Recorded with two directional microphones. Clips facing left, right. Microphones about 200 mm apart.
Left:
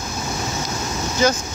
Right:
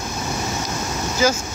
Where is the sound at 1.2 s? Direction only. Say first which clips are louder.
Left 1 dB; 5° right (ahead or behind).